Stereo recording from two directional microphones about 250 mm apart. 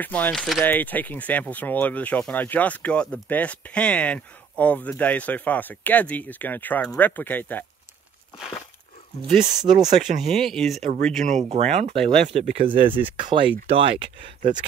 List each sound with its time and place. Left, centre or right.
0.0 s speech: centre
9.6 s speech: centre
9.9 s speech: centre
10.8 s speech: right